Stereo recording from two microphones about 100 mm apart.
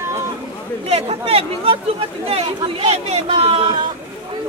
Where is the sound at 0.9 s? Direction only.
90° right; by 3.7 s 70° right (ahead or behind).